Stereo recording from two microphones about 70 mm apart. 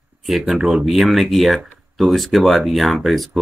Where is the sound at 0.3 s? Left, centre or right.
Centre.